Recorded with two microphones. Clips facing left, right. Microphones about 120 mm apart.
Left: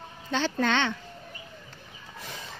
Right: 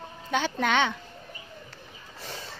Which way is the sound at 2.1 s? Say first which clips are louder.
Right 1 dB; 30° right (ahead or behind).